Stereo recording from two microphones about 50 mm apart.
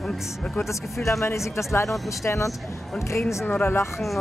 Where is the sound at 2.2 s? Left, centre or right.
Left.